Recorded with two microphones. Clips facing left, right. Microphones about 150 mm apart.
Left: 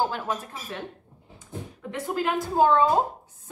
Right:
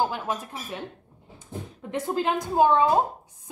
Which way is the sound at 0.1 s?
15° right (ahead or behind).